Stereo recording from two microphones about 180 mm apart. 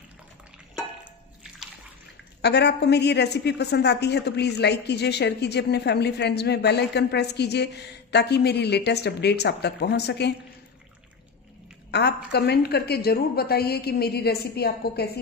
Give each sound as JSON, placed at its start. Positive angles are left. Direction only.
{"t": 2.4, "sound": "a woman's voice", "side_deg": 70}
{"t": 11.9, "sound": "a woman's voice", "side_deg": 65}